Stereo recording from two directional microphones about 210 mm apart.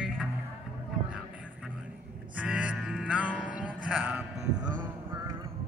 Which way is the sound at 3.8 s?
5° right (ahead or behind).